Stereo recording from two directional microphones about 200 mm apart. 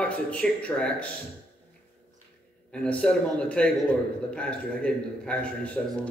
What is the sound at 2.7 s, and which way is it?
A man's voice, 5° left (ahead or behind).